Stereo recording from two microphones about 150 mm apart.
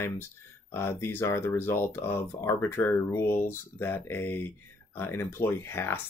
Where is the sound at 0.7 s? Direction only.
15° left (ahead or behind).